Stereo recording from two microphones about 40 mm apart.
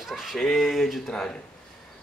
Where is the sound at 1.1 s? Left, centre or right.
Left.